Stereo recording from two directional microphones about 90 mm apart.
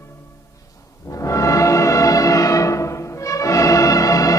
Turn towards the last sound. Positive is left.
turn(degrees=40)  # may be behind; listen again after turning